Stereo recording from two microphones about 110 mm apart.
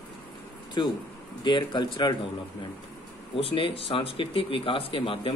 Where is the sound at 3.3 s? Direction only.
55° left (ahead or behind).